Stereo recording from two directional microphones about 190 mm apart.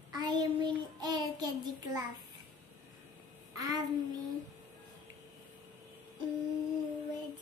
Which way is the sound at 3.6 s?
20° right (ahead or behind).